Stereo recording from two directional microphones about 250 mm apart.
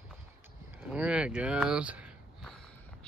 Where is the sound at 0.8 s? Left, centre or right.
Centre.